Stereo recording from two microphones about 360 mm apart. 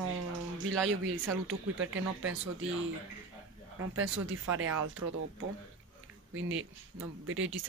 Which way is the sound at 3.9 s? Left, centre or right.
Right.